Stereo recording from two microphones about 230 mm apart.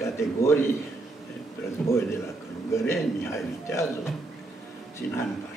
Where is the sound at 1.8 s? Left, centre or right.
Centre.